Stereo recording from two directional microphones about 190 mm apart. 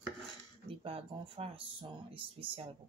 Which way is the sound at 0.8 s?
30° right (ahead or behind).